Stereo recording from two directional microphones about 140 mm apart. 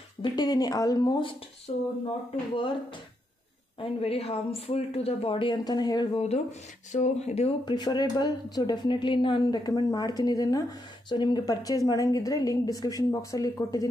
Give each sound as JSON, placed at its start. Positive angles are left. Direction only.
{"t": 0.2, "sound": "a woman's voice", "side_deg": 30}
{"t": 1.7, "sound": "speech", "side_deg": 50}
{"t": 3.8, "sound": "speech", "side_deg": 45}
{"t": 6.1, "sound": "speech", "side_deg": 50}
{"t": 7.6, "sound": "a woman's voice", "side_deg": 30}